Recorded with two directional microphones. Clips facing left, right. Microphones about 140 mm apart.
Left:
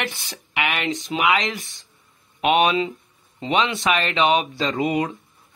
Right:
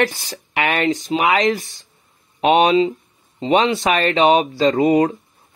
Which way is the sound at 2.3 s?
30° right (ahead or behind).